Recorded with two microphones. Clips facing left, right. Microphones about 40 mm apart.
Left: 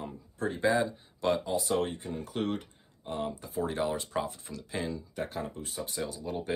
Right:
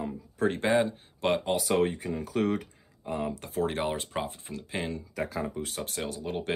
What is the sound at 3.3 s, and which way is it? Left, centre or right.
Speech, right.